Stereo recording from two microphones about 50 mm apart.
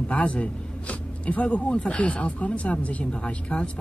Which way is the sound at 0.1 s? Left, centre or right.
Left.